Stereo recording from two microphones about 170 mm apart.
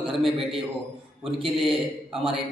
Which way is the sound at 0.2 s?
Centre (ahead or behind).